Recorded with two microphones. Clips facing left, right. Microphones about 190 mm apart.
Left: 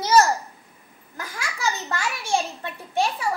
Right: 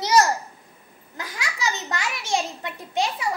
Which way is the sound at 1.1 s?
20° right (ahead or behind).